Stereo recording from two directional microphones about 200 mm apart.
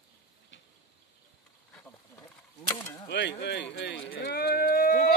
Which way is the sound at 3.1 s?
55° left (ahead or behind).